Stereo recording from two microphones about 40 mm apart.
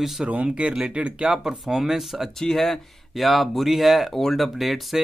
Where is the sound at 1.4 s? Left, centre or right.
Centre.